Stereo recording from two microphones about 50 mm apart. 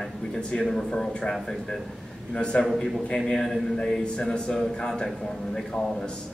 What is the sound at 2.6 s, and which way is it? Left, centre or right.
A man's voice, centre.